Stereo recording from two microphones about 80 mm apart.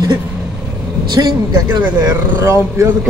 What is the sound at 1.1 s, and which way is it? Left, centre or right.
Speech, right.